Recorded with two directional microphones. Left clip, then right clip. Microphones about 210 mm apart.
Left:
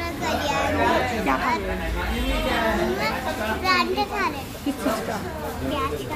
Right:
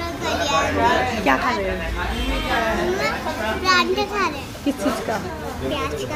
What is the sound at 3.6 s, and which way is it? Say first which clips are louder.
Speech: right 4 dB; 5° right (ahead or behind).